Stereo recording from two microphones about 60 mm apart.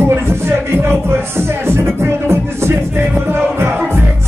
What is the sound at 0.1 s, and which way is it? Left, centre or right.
Music, right.